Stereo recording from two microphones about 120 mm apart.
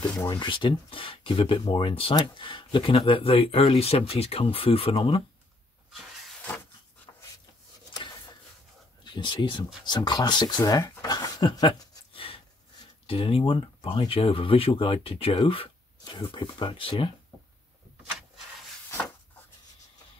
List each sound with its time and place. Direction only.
0.3 s speech: 40° left (ahead or behind)
9.0 s speech: 40° left (ahead or behind)
12.1 s a sound: 50° left (ahead or behind)
13.0 s speech: 50° left (ahead or behind)